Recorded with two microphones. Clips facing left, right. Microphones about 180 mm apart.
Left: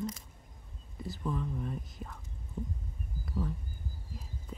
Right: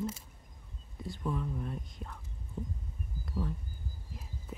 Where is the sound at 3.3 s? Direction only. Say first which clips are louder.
Left 1 dB; centre (ahead or behind).